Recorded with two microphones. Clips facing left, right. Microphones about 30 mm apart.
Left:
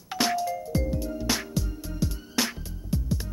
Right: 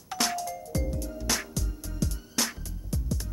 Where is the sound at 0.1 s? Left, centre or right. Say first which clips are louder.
Left 4 dB; centre.